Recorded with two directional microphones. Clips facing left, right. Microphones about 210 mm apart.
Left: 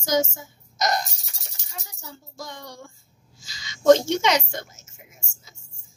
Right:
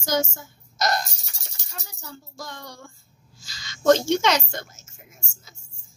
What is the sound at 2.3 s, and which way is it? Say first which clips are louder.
A woman's voice: left 2 dB; 20° left (ahead or behind).